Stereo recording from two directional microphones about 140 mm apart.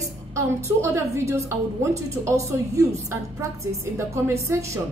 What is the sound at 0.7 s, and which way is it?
A woman's voice, 20° right (ahead or behind).